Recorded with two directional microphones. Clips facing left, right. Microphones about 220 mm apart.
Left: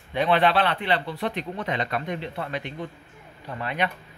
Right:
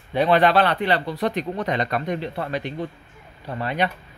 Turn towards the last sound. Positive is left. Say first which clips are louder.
# right 4 dB
turn(degrees=-35)  # may be behind; listen again after turning